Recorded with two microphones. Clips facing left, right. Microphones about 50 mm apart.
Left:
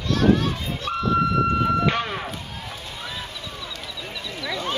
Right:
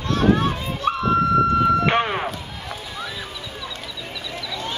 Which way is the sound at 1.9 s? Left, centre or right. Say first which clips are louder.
Right 4 dB; right.